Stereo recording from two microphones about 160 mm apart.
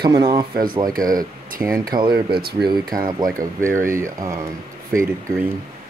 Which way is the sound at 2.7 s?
25° right (ahead or behind).